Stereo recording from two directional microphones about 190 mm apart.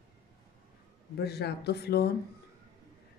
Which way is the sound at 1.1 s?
60° left (ahead or behind).